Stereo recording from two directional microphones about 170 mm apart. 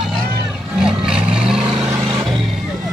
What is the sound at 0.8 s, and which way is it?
Vehicle, 5° right (ahead or behind).